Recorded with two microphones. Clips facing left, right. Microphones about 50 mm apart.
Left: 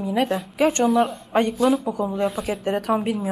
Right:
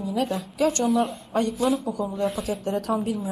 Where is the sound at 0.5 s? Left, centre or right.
Left.